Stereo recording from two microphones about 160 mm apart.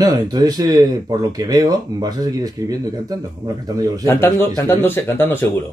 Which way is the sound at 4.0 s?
15° left (ahead or behind).